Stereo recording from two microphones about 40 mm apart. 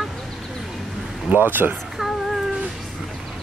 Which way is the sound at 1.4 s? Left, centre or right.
Right.